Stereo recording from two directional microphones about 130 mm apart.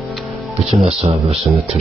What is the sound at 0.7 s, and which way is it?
Speech, 55° right (ahead or behind).